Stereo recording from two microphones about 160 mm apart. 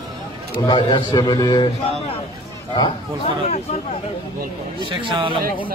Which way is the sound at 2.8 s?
35° left (ahead or behind).